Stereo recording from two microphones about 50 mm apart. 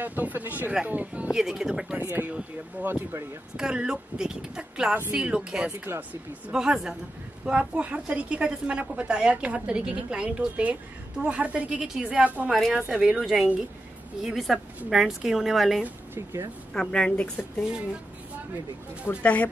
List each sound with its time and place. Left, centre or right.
0.0 s speech: right
1.3 s a woman's voice: centre
2.8 s speech: right
3.5 s a woman's voice: centre
5.9 s speech: right
6.5 s a woman's voice: centre
11.9 s a woman's voice: centre
12.2 s a woman's voice: right
12.9 s a woman's voice: centre
16.2 s speech: right
16.7 s a woman's voice: centre
17.4 s a woman's voice: centre
19.2 s a woman's voice: left